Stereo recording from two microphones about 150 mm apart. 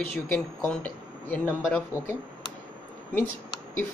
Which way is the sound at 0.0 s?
10° left (ahead or behind).